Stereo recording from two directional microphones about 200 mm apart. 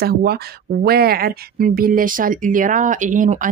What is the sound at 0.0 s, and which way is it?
Speech, 50° right (ahead or behind).